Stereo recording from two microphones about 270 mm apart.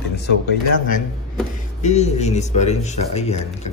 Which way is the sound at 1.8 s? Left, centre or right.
Left.